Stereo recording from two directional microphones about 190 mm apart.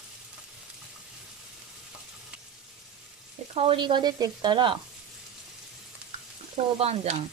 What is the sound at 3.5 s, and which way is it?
Frying, 30° right (ahead or behind).